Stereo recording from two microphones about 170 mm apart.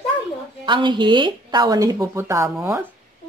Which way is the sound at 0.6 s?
25° right (ahead or behind).